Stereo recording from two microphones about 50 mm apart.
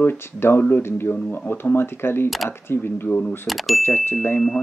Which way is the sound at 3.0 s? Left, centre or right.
Left.